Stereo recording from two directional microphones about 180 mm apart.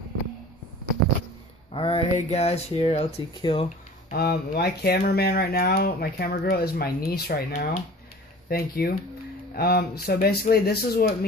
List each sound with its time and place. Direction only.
1.7 s speech: 30° left (ahead or behind)
3.6 s speech: 60° left (ahead or behind)
7.5 s speech: 45° left (ahead or behind)
8.5 s speech: 55° left (ahead or behind)